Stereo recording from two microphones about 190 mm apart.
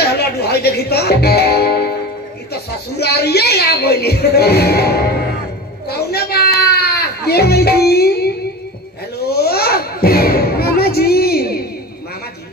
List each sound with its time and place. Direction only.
0.0 s music: 60° left (ahead or behind)
2.5 s a woman's voice: 60° left (ahead or behind)
5.9 s baby cry: 55° left (ahead or behind)
9.3 s a sound: 55° left (ahead or behind)